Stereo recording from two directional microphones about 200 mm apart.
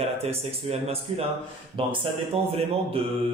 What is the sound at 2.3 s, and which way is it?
Speech, 30° right (ahead or behind).